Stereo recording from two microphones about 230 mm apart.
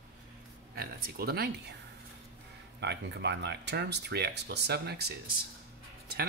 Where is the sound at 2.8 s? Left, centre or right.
Right.